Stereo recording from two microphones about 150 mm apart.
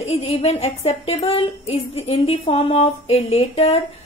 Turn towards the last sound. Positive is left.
turn(degrees=45)  # may be behind; listen again after turning